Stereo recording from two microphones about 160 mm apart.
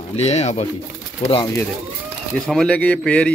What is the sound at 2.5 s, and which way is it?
Speech, 5° left (ahead or behind).